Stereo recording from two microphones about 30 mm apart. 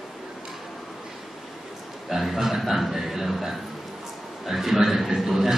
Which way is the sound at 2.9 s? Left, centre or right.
Centre.